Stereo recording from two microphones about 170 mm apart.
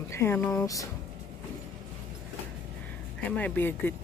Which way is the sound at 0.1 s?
15° left (ahead or behind).